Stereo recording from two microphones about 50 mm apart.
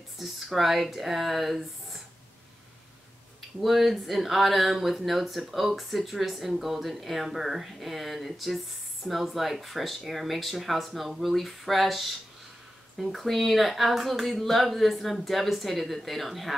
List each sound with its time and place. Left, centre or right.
0.2 s speech: centre
3.6 s speech: centre